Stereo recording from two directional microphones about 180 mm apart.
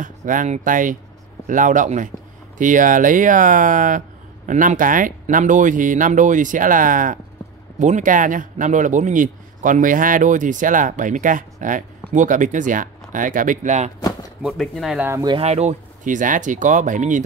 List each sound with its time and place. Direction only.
0.0 s a man's voice: 45° right (ahead or behind)
14.4 s speech: centre (ahead or behind)
15.0 s speech: 15° right (ahead or behind)
15.3 s a man's voice: 35° right (ahead or behind)